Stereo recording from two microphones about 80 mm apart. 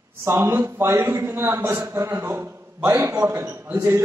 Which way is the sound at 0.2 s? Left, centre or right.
Right.